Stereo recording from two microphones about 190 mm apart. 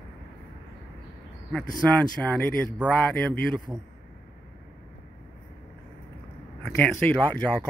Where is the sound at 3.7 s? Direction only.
20° right (ahead or behind).